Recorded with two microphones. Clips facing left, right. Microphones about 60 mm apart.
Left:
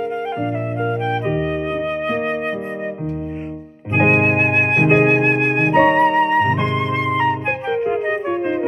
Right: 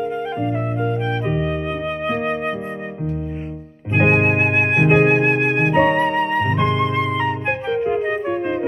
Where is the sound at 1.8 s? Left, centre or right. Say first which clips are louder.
Left 2 dB; left.